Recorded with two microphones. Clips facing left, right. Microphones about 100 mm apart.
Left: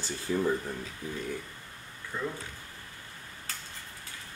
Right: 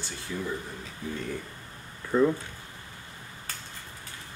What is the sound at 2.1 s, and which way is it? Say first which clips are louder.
Speech: right 13 dB; 90° right.